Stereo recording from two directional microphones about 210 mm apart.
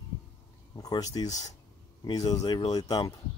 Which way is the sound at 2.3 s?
20° left (ahead or behind).